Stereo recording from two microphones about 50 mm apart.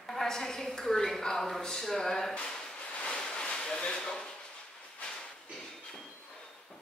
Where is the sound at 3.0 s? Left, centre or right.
Centre.